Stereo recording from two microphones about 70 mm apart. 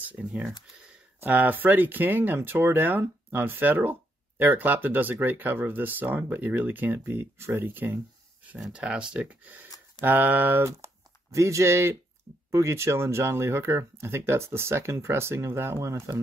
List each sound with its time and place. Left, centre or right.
0.1 s speech: centre
8.5 s speech: centre; by 10.7 s right
11.3 s speech: right